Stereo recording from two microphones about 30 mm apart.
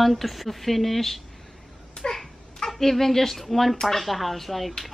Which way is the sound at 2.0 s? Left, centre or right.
Left.